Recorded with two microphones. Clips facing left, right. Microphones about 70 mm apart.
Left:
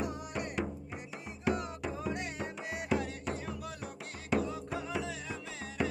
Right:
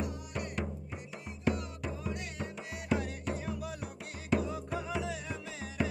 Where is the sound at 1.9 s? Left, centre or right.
Left.